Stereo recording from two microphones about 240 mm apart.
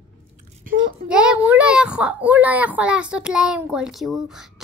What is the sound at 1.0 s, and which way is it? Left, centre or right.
A child's voice, centre.